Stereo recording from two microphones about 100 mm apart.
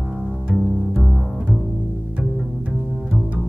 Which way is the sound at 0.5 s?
15° right (ahead or behind).